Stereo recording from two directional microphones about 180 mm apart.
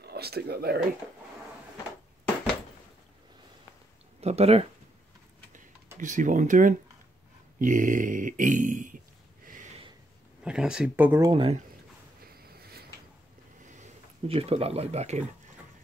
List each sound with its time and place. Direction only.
0.0 s speech: 60° right (ahead or behind)
4.2 s speech: 35° right (ahead or behind)
5.9 s a sound: 45° right (ahead or behind)
10.4 s speech: 5° right (ahead or behind)
11.2 s speech: 30° right (ahead or behind)
12.3 s a sound: 60° right (ahead or behind)
13.7 s speech: 40° right (ahead or behind)